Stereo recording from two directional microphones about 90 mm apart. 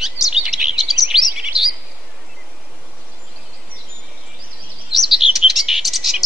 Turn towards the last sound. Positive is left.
turn(degrees=0)  # may be behind; listen again after turning